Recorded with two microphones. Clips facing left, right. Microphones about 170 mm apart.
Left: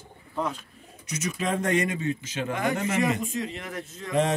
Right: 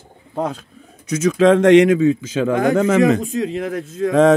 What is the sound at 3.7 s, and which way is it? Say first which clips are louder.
Speech: right 15 dB; 90° right.